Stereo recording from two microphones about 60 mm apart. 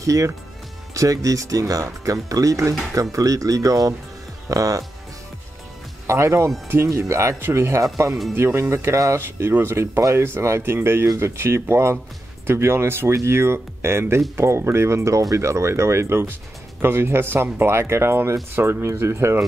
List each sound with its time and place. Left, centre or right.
0.0 s speech: right
6.0 s speech: right